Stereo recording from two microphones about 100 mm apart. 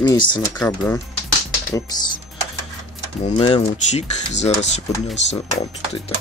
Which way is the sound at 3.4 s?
90° left.